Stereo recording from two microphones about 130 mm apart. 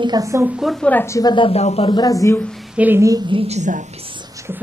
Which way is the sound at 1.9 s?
30° left (ahead or behind).